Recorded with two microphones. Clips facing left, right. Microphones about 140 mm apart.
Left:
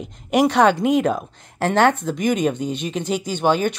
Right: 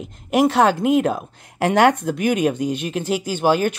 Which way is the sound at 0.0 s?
5° right (ahead or behind).